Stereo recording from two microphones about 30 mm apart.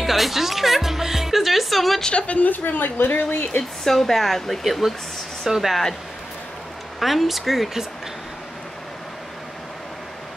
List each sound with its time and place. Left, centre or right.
0.0 s music: centre
2.1 s a woman's voice: left
2.4 s a woman's voice: left
3.8 s speech: centre
5.5 s speech: centre
7.0 s speech: centre